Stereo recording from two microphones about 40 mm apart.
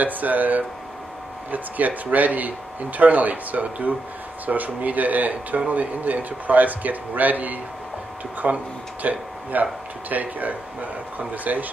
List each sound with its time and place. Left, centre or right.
0.0 s speech: right